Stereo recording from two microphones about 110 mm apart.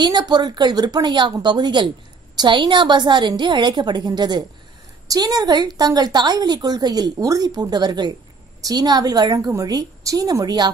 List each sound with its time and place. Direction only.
0.0 s a woman's voice: 40° right (ahead or behind)